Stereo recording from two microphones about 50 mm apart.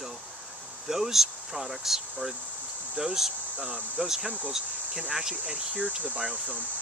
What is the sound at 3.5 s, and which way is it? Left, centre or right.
Speech, right.